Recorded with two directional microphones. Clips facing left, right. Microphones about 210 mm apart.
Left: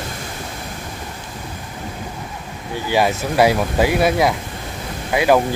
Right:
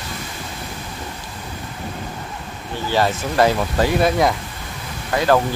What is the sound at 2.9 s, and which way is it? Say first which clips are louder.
Speech: left 2 dB; 10° left (ahead or behind).